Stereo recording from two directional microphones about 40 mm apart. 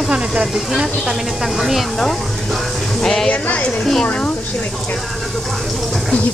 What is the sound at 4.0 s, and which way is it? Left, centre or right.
Speech, left.